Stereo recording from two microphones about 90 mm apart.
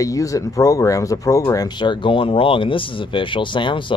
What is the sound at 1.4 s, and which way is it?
Speech, 50° left (ahead or behind).